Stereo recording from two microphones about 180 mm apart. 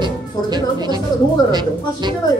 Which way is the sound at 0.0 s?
25° right (ahead or behind).